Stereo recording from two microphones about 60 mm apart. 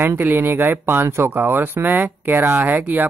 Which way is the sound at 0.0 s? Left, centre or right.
Right.